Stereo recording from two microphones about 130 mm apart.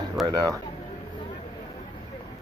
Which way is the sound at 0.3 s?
25° right (ahead or behind).